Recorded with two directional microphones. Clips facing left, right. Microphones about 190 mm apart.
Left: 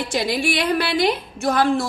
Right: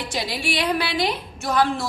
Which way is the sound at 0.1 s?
50° left (ahead or behind).